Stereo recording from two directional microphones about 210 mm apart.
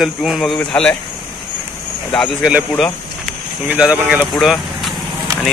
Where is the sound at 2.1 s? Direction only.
Centre (ahead or behind).